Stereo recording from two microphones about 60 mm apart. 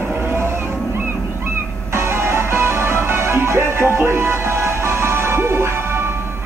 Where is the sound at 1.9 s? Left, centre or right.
Right.